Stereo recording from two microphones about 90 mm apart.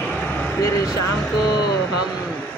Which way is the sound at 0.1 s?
20° left (ahead or behind).